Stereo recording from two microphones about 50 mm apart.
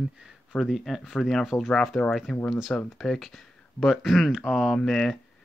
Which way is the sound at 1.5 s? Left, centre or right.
Left.